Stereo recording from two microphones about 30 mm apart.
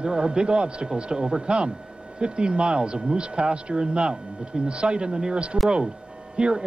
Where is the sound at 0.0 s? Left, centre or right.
Right.